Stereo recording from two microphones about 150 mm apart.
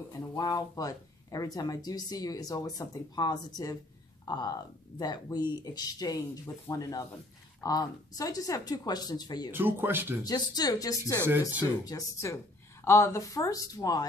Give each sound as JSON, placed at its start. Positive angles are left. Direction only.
{"t": 0.4, "sound": "speech", "side_deg": 25}
{"t": 9.5, "sound": "speech", "side_deg": -15}
{"t": 10.2, "sound": "speech", "side_deg": 25}
{"t": 11.2, "sound": "speech", "side_deg": -15}
{"t": 11.8, "sound": "speech", "side_deg": 25}